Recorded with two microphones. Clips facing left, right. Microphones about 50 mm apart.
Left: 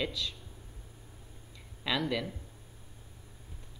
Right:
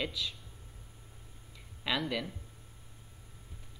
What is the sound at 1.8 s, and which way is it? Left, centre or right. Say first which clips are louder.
Speech: left 2 dB; centre.